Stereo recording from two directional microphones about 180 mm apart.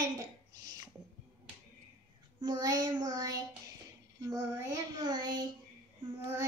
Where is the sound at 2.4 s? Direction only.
20° right (ahead or behind).